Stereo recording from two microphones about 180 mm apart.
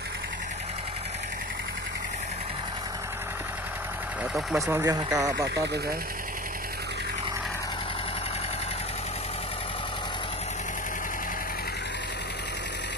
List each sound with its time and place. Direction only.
4.6 s speech: 15° right (ahead or behind)